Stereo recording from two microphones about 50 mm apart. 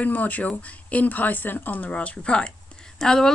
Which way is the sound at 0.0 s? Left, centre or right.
Left.